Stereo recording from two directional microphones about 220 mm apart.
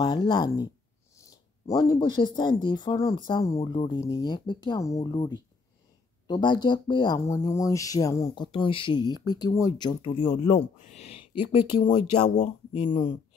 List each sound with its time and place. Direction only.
0.0 s speech: 20° left (ahead or behind)